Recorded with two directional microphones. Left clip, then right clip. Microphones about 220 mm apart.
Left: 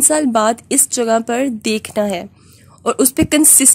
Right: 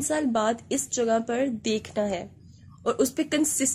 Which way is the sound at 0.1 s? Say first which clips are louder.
Left 8 dB; 50° left (ahead or behind).